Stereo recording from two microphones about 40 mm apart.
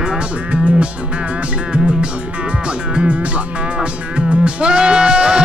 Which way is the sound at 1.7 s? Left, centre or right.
Right.